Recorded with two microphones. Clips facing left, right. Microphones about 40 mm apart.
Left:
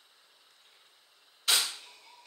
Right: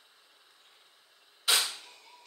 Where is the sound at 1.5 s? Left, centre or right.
Centre.